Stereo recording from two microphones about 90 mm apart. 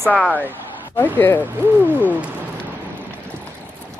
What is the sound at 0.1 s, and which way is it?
Speech, 20° left (ahead or behind).